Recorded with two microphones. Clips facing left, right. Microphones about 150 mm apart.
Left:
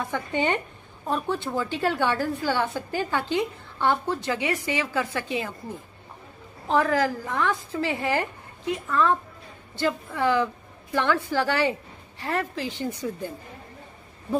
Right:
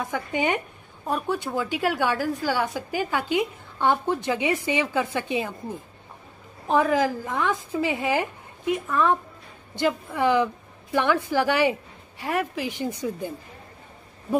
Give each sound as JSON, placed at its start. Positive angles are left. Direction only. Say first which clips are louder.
{"t": 0.1, "sound": "a woman's voice", "louder": "even", "side_deg": -10}